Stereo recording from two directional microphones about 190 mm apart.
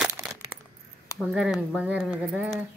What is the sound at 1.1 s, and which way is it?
Speech, 5° right (ahead or behind).